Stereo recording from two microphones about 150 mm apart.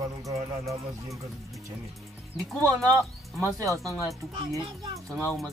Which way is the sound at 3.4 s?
20° right (ahead or behind).